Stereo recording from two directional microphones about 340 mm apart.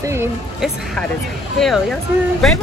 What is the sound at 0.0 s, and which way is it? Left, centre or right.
Speech, centre.